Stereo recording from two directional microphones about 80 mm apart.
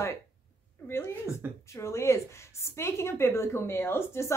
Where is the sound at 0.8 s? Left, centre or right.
Left.